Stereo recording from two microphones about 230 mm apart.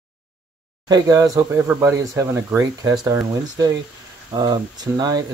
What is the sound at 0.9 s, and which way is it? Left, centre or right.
Speech, centre.